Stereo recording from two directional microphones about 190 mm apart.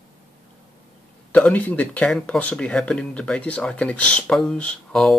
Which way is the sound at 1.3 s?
10° left (ahead or behind).